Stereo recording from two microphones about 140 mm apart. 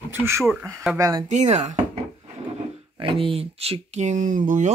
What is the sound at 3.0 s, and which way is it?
Speech, 40° right (ahead or behind).